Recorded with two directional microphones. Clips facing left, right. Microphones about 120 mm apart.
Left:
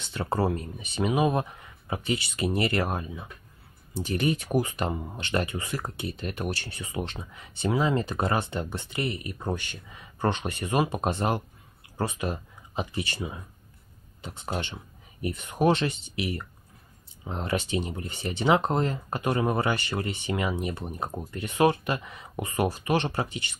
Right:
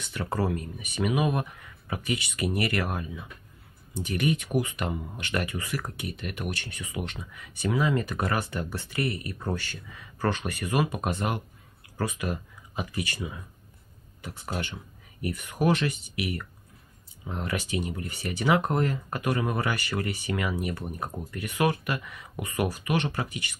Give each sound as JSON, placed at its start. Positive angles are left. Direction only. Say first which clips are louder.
{"t": 0.0, "sound": "speech", "louder": "left 2 dB", "side_deg": 30}